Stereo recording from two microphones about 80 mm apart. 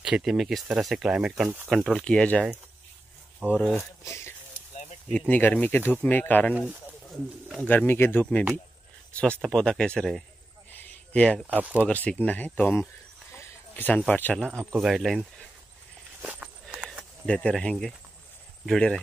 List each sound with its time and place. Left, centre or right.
0.0 s speech: centre
1.7 s speech: centre
4.0 s speech: left
5.1 s speech: centre
7.6 s speech: left; by 11.4 s centre
11.4 s speech: right
11.9 s speech: centre
14.4 s speech: centre
16.2 s walk: centre
16.7 s a sound: centre
17.3 s speech: centre